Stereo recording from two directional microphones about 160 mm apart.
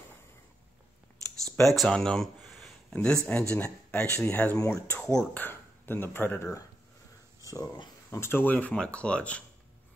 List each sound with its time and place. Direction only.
1.8 s a sound: 5° left (ahead or behind)
3.3 s speech: 10° left (ahead or behind)
5.0 s speech: 5° left (ahead or behind)
7.5 s speech: 25° left (ahead or behind)
8.1 s speech: 15° left (ahead or behind)